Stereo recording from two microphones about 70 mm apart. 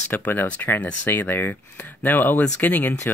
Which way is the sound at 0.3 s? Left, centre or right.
Left.